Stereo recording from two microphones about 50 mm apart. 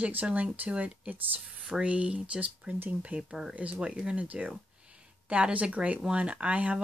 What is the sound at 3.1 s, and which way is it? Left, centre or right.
Speech, right.